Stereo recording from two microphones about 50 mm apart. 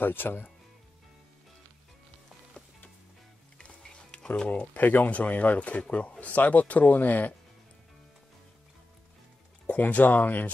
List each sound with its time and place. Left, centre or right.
0.0 s speech: left
3.5 s music: centre
4.5 s speech: left
9.7 s speech: left